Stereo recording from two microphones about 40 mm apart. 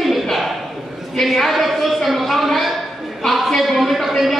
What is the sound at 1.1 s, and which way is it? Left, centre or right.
A man's voice, centre.